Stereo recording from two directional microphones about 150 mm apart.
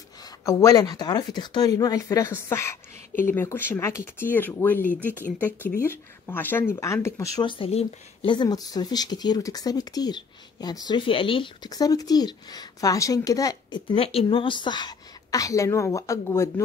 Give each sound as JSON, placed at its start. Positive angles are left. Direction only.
{"t": 0.2, "sound": "speech", "side_deg": 20}
{"t": 7.3, "sound": "speech", "side_deg": 35}